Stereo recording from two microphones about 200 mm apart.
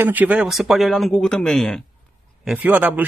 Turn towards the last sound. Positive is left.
turn(degrees=-10)  # may be behind; listen again after turning